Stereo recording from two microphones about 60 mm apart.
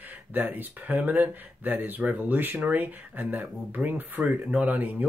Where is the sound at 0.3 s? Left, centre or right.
Right.